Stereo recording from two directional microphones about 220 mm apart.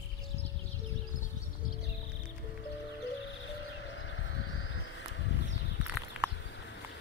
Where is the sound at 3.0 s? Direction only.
60° left (ahead or behind).